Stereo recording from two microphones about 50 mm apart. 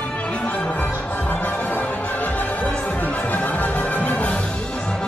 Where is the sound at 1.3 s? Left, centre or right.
Left.